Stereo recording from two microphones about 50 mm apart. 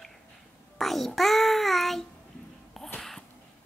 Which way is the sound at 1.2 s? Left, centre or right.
Centre.